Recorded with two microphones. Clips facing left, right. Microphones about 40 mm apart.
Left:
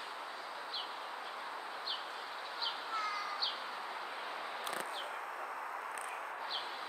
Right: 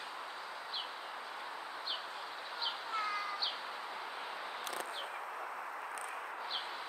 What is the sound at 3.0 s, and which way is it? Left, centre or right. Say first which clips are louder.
Bird: right 2 dB; right.